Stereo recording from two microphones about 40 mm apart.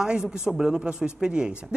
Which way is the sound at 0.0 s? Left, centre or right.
Centre.